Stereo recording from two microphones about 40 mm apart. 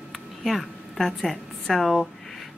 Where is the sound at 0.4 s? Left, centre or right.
Centre.